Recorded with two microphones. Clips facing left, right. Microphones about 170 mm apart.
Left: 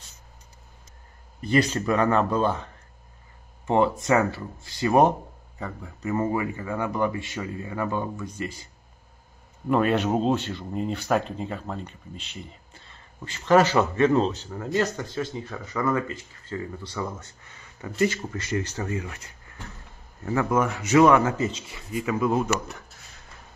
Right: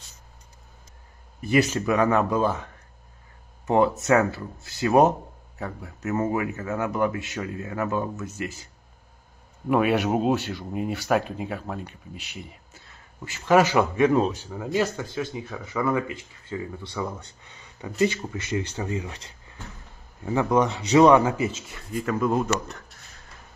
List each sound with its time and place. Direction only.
1.4 s a man's voice: 5° right (ahead or behind)
9.7 s speech: 10° right (ahead or behind)
21.6 s speech: 5° left (ahead or behind)